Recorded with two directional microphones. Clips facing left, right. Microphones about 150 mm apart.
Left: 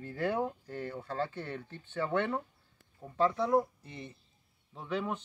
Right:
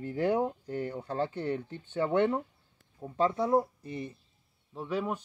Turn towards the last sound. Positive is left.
turn(degrees=-10)  # may be behind; listen again after turning